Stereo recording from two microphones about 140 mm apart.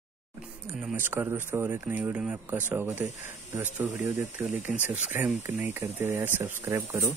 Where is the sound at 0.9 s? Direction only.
15° right (ahead or behind).